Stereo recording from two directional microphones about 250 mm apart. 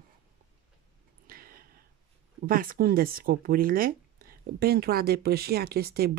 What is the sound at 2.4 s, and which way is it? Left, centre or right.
Speech, right.